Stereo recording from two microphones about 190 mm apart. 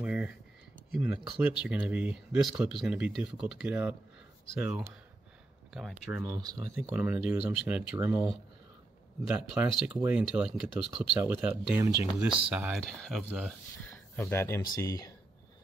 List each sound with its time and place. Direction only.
0.0 s a sound: 5° right (ahead or behind)
0.9 s speech: 5° right (ahead or behind)
6.1 s speech: 20° right (ahead or behind)
6.9 s speech: 10° right (ahead or behind)
9.3 s speech: 5° right (ahead or behind); by 15.1 s 15° left (ahead or behind)